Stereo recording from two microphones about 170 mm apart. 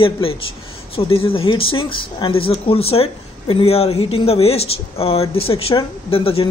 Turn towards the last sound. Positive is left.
turn(degrees=35)  # may be behind; listen again after turning